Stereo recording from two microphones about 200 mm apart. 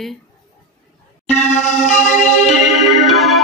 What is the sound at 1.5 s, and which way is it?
Music, 35° left (ahead or behind).